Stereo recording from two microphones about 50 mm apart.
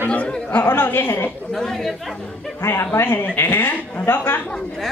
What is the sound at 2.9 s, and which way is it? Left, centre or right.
A man's voice, left.